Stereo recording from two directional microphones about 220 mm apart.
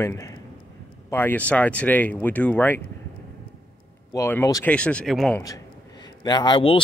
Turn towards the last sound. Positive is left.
turn(degrees=25)  # may be behind; listen again after turning